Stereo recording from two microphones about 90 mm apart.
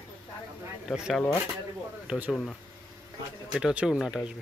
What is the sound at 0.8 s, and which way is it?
Speech, 5° right (ahead or behind).